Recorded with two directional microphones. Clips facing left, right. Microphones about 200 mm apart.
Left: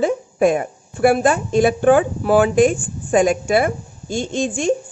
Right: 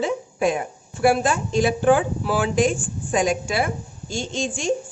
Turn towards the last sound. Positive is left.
turn(degrees=55)  # may be behind; listen again after turning